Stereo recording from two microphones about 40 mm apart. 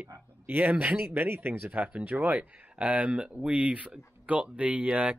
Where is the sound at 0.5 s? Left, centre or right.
Right.